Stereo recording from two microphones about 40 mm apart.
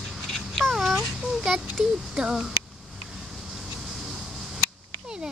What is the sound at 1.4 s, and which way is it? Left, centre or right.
Speech, centre.